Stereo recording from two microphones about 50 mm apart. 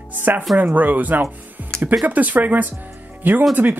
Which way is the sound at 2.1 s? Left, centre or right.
Right.